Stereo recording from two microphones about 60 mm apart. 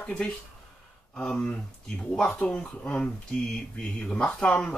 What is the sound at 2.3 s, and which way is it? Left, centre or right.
Speech, left.